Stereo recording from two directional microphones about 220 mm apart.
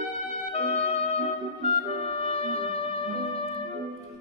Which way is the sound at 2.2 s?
25° left (ahead or behind).